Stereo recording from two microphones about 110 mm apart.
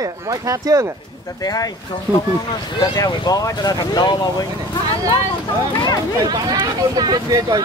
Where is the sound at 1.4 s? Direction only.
35° left (ahead or behind).